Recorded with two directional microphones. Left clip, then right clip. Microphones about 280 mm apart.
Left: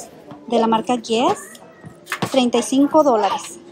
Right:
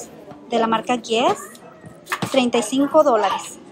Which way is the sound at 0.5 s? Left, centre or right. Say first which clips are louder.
Left 2 dB; centre.